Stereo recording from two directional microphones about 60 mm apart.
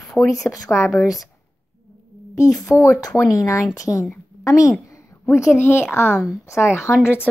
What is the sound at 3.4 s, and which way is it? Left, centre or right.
Speech, left.